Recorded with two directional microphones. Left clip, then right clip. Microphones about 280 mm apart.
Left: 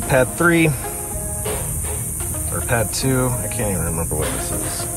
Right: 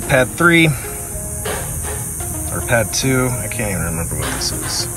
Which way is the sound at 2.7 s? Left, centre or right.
Centre.